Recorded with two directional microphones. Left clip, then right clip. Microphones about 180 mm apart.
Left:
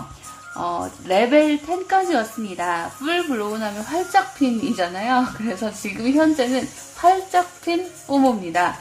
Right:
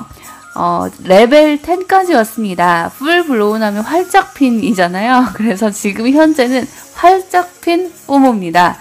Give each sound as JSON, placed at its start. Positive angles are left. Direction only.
{"t": 0.6, "sound": "a woman's voice", "side_deg": -40}